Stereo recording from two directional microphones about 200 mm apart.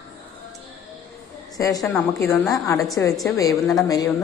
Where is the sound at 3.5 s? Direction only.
Centre (ahead or behind).